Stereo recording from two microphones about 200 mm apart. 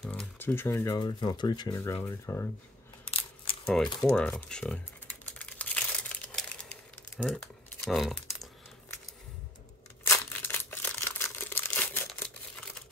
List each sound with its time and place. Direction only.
0.0 s a sound: 5° left (ahead or behind)
0.9 s speech: 20° left (ahead or behind)
3.6 s typing: 5° left (ahead or behind)
7.8 s speech: centre (ahead or behind)
10.0 s crumpling: 10° left (ahead or behind)